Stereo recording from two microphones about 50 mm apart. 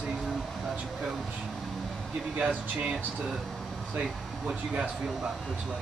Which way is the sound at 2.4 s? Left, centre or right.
Right.